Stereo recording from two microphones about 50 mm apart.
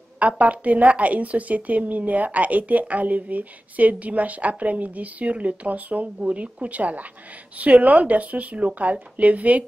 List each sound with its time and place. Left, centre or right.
0.2 s a woman's voice: right